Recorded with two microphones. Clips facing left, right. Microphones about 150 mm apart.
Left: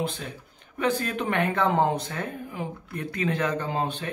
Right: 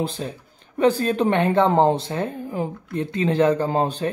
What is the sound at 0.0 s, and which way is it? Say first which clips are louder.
Speech: right 4 dB; 35° right (ahead or behind).